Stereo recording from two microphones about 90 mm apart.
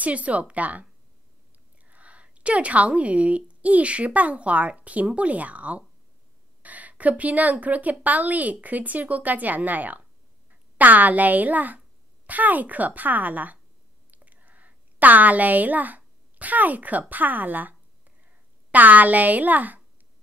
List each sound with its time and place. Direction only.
0.0 s a woman's voice: 15° right (ahead or behind)
1.9 s a woman's voice: 15° right (ahead or behind)
14.1 s a sound: 20° right (ahead or behind)
17.1 s a woman's voice: 20° right (ahead or behind)